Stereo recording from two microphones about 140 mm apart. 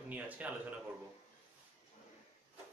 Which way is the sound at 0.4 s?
10° right (ahead or behind).